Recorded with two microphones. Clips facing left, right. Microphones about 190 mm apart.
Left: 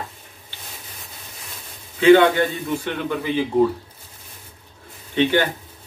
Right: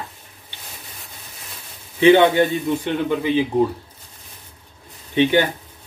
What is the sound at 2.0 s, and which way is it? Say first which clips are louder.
A man's voice: even; 20° right (ahead or behind).